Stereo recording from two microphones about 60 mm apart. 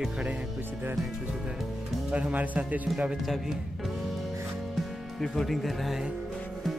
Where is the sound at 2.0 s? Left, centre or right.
Right.